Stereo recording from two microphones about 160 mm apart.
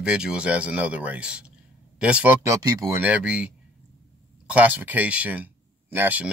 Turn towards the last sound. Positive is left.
turn(degrees=-10)  # may be behind; listen again after turning